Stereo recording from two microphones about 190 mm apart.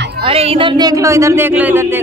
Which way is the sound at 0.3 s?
30° right (ahead or behind).